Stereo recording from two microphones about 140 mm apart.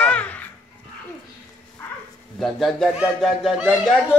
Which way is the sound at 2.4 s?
Centre (ahead or behind).